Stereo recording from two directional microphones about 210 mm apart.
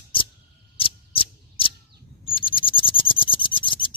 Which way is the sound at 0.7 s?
25° left (ahead or behind).